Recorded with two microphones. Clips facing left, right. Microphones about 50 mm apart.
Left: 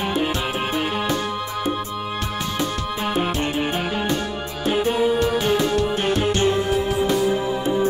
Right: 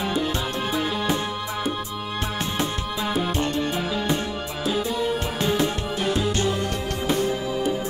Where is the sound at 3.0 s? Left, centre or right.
Left.